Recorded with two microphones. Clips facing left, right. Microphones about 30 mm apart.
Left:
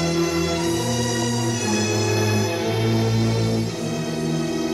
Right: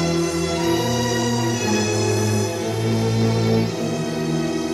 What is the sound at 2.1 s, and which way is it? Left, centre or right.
Music, centre.